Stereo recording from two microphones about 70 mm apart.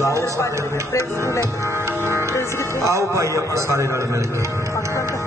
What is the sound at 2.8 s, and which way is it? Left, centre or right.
A man's voice, right.